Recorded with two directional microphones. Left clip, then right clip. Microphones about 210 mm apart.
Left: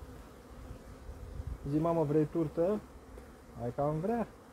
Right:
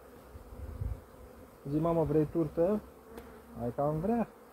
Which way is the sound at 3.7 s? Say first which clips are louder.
Right 1 dB; 15° left (ahead or behind).